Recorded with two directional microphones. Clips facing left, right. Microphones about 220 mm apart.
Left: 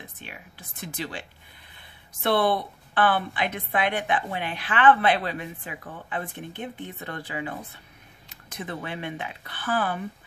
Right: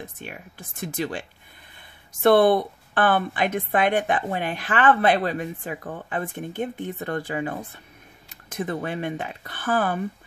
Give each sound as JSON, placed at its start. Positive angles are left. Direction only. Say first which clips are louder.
{"t": 0.2, "sound": "a woman's voice", "louder": "right 5 dB", "side_deg": -45}
{"t": 2.2, "sound": "a woman's voice", "louder": "right 7 dB", "side_deg": -45}